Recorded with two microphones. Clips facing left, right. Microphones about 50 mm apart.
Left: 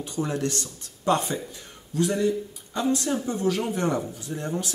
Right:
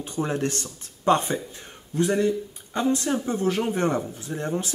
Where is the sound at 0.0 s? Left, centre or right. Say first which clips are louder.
Right 1 dB; right.